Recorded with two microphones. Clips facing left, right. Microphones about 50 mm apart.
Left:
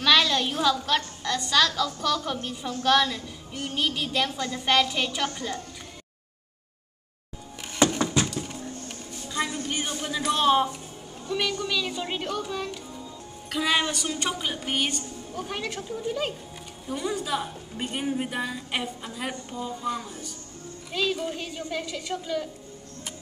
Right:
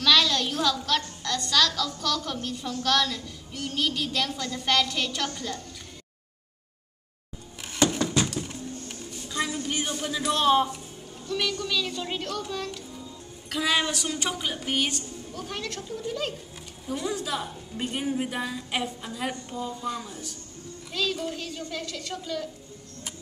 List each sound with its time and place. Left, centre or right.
0.0 s a woman's voice: centre
8.4 s a sound: centre
10.3 s a woman's voice: centre
15.3 s a woman's voice: centre